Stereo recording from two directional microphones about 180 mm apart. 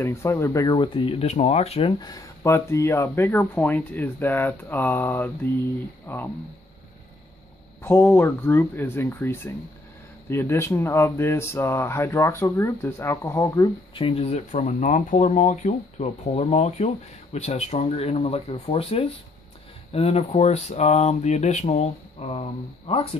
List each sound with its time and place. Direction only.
0.0 s speech: 15° left (ahead or behind)
7.8 s speech: 10° left (ahead or behind)
13.9 s speech: 30° left (ahead or behind)